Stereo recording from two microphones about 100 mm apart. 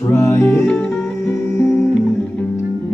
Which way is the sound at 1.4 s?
25° left (ahead or behind).